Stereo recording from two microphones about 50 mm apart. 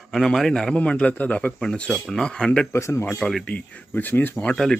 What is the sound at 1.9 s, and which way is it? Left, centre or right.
Speech, centre.